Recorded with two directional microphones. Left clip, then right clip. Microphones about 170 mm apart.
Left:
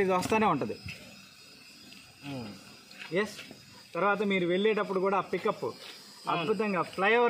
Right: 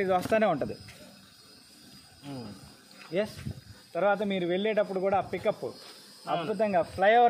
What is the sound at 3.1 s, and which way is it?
Speech, 35° left (ahead or behind).